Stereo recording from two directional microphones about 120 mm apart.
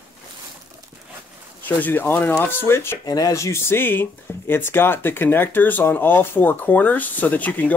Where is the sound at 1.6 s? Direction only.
15° left (ahead or behind).